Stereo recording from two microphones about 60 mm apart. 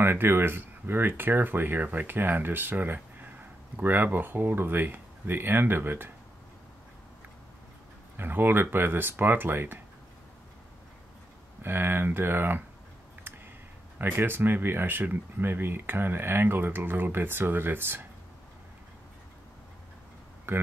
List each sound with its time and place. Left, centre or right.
0.0 s speech: right
8.2 s speech: right
11.6 s speech: right
13.9 s speech: right
20.5 s speech: right